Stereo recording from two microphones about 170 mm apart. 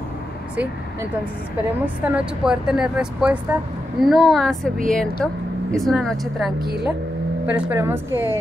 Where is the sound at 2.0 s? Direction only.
5° right (ahead or behind).